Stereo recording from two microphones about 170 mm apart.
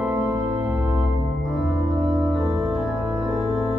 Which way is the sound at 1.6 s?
Centre (ahead or behind).